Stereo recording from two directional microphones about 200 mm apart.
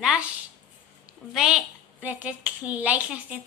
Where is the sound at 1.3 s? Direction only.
5° right (ahead or behind).